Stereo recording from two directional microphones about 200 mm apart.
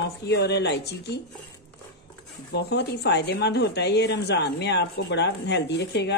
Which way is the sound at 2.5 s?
55° left (ahead or behind).